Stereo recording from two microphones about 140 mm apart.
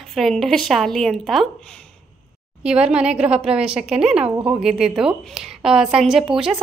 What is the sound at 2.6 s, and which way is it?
A woman's voice, 5° right (ahead or behind).